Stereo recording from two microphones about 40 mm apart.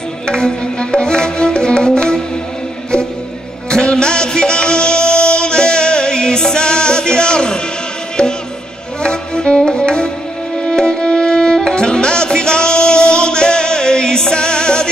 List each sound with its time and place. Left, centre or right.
0.3 s music: left
3.7 s music: left